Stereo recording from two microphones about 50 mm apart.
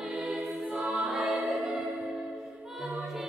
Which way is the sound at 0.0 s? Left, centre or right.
Centre.